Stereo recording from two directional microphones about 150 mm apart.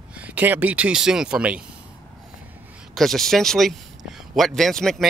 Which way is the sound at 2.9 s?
Centre (ahead or behind).